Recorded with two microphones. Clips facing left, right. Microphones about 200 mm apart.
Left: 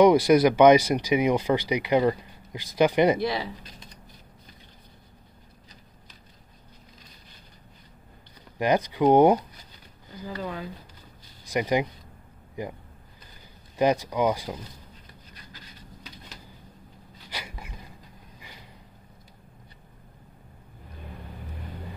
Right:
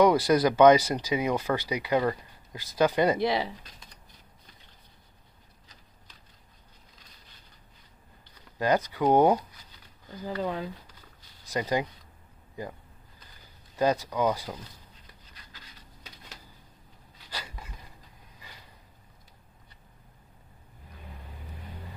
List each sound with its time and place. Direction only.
0.0 s speech: 15° left (ahead or behind)
3.2 s speech: 20° right (ahead or behind)
8.5 s speech: 15° left (ahead or behind)
10.3 s speech: 25° right (ahead or behind)
11.4 s speech: 15° left (ahead or behind)
13.7 s speech: 15° left (ahead or behind)
17.3 s a sound: 15° left (ahead or behind)